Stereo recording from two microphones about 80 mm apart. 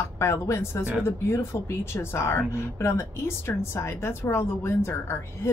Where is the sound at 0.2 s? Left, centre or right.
Left.